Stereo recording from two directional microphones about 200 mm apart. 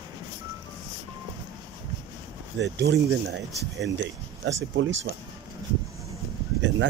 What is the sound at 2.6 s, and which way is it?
Speech, 60° right (ahead or behind).